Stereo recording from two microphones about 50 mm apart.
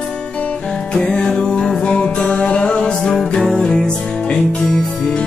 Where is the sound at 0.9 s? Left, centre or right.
Left.